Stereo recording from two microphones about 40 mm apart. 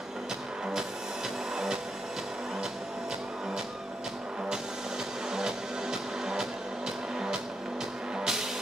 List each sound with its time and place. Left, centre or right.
5.3 s music: centre
8.2 s music: centre